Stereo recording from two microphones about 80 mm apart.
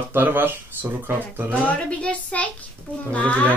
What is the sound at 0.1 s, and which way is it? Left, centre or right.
Speech, right.